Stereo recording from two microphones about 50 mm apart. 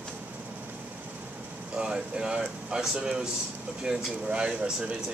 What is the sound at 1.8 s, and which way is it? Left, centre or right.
Speech, centre.